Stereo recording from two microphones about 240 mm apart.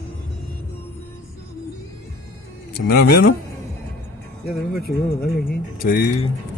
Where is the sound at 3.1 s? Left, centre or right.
Left.